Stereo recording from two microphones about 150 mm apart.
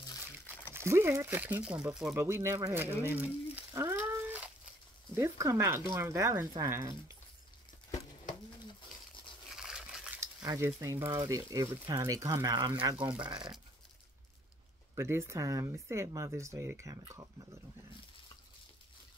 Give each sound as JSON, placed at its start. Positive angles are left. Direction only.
{"t": 0.7, "sound": "speech", "side_deg": -15}
{"t": 2.1, "sound": "speech", "side_deg": -15}
{"t": 9.6, "sound": "a sound", "side_deg": -5}
{"t": 10.2, "sound": "speech", "side_deg": -20}
{"t": 13.1, "sound": "speech", "side_deg": -5}
{"t": 15.0, "sound": "speech", "side_deg": -15}